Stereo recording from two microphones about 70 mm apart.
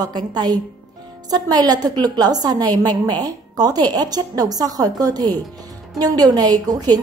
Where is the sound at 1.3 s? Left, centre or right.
Right.